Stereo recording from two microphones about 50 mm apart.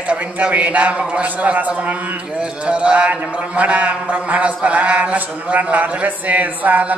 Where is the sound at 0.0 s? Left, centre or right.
Right.